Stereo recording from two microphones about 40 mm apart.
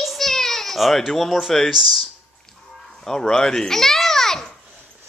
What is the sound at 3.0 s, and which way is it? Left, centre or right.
A child's voice, centre.